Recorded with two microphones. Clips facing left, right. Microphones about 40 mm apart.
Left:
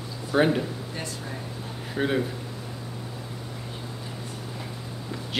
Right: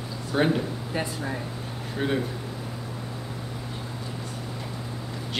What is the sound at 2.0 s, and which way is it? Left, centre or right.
Speech, centre.